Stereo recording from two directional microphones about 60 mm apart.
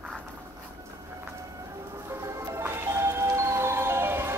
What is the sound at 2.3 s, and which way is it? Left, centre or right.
Music, right.